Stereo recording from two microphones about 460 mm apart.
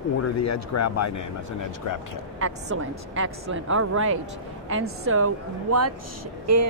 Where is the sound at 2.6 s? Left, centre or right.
Right.